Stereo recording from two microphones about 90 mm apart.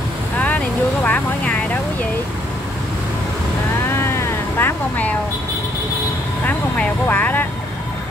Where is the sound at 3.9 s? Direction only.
25° left (ahead or behind).